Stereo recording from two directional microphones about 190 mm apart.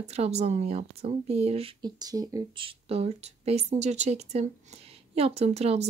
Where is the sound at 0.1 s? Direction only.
35° right (ahead or behind).